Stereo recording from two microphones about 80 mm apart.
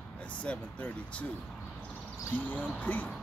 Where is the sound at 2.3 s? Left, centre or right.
Left.